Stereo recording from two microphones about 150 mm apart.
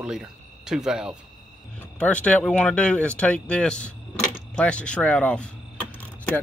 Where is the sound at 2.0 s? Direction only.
5° left (ahead or behind).